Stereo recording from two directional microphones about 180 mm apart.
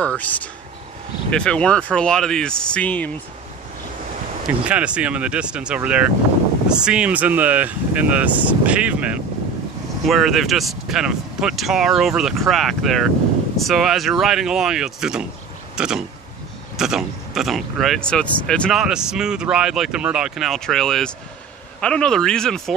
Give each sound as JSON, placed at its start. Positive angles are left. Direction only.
{"t": 0.0, "sound": "speech", "side_deg": 5}
{"t": 4.6, "sound": "speech", "side_deg": -5}
{"t": 15.7, "sound": "a sound", "side_deg": -5}
{"t": 16.7, "sound": "speech", "side_deg": -5}